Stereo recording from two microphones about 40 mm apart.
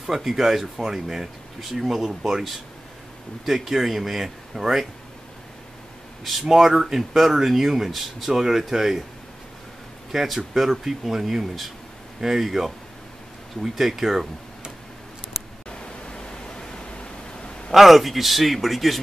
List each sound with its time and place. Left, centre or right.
0.0 s speech: centre
2.0 s speech: centre
3.4 s speech: centre
6.4 s speech: centre
10.1 s speech: centre
15.7 s pink noise: left
17.7 s speech: centre